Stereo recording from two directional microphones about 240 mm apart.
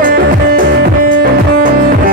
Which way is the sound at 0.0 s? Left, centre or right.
Right.